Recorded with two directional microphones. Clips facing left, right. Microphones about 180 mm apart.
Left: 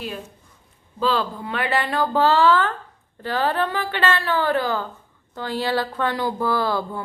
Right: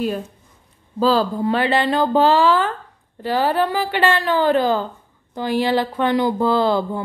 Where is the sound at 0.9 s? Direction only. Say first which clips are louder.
Right 6 dB; 35° right (ahead or behind).